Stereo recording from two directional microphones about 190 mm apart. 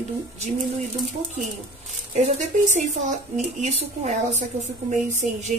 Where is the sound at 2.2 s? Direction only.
40° right (ahead or behind).